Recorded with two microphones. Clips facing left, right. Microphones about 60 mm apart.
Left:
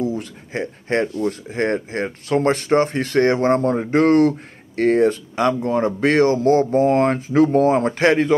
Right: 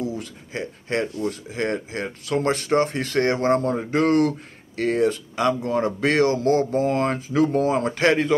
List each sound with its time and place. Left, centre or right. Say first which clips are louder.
0.0 s a man's voice: left 5 dB; left